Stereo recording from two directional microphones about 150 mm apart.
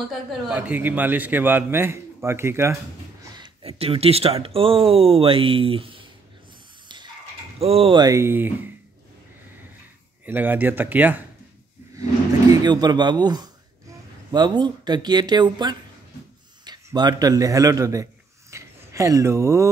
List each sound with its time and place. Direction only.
0.1 s a man's voice: 10° right (ahead or behind)
3.3 s speech: 40° right (ahead or behind)
7.5 s speech: 40° right (ahead or behind)
8.0 s a man's voice: 20° right (ahead or behind)
10.2 s a man's voice: 10° right (ahead or behind)
12.6 s speech: 25° right (ahead or behind)
18.5 s a sound: 20° right (ahead or behind)